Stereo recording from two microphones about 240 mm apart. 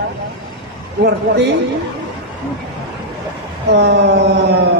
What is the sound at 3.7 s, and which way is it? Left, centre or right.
Speech, right.